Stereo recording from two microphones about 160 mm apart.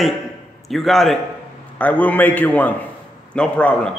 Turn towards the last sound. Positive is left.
turn(degrees=5)  # may be behind; listen again after turning